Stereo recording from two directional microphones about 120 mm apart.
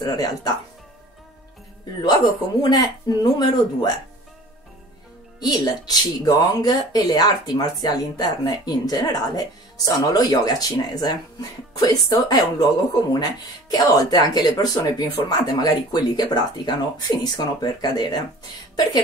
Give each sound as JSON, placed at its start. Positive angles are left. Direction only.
{"t": 0.0, "sound": "speech", "side_deg": 30}
{"t": 2.6, "sound": "speech", "side_deg": 35}
{"t": 5.4, "sound": "speech", "side_deg": 35}